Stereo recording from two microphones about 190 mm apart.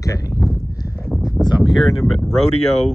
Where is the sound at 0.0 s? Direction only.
15° left (ahead or behind).